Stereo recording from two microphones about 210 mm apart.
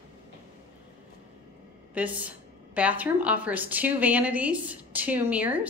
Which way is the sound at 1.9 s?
5° right (ahead or behind).